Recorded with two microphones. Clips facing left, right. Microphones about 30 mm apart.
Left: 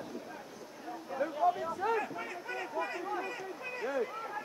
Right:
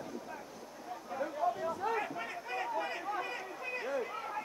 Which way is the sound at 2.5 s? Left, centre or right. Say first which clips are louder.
Right 1 dB; centre.